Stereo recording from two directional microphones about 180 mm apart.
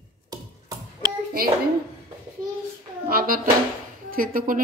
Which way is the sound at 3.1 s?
55° right (ahead or behind).